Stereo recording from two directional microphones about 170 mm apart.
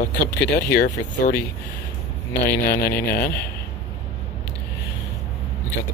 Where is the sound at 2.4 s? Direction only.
65° left (ahead or behind).